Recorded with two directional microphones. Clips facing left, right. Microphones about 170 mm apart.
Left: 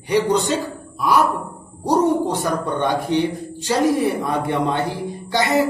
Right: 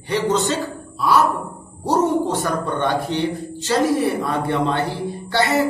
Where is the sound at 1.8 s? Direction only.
15° left (ahead or behind).